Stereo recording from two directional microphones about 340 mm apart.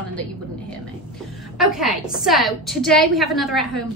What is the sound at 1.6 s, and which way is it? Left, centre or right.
A woman's voice, centre.